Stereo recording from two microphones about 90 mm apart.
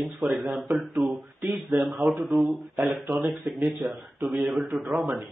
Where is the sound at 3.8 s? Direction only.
20° right (ahead or behind).